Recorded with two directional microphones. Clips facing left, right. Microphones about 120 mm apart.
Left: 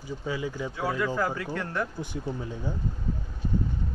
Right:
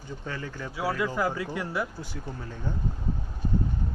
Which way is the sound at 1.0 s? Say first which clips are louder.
Even; 10° right (ahead or behind).